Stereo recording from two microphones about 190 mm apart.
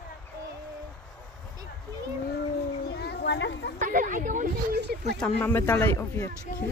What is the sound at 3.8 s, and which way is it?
Speech, 45° right (ahead or behind).